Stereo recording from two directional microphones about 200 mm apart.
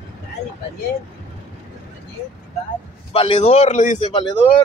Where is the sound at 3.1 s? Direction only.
30° left (ahead or behind).